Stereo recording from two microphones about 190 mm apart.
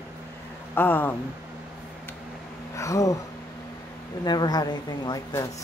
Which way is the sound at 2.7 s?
15° left (ahead or behind).